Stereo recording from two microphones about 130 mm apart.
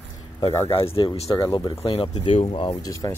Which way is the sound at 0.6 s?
45° left (ahead or behind).